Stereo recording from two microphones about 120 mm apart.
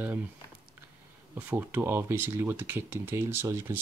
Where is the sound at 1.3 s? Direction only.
15° right (ahead or behind).